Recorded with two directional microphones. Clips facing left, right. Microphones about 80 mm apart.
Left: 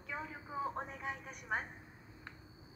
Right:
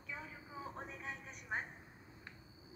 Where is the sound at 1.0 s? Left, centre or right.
Left.